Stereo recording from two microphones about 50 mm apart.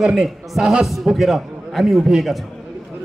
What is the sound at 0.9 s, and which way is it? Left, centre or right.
A man's voice, centre.